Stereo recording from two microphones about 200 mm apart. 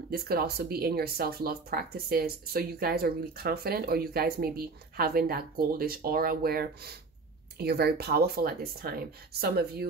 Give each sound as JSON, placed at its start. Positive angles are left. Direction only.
{"t": 0.1, "sound": "speech", "side_deg": -50}